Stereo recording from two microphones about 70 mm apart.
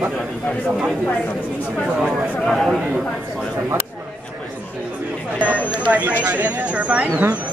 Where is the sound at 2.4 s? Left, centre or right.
Centre.